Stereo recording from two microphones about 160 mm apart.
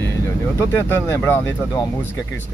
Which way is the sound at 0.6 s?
15° left (ahead or behind).